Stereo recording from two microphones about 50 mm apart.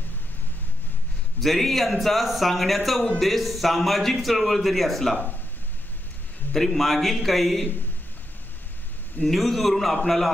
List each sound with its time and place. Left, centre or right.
1.4 s speech: centre
5.1 s speech: left
6.5 s speech: centre
9.2 s speech: centre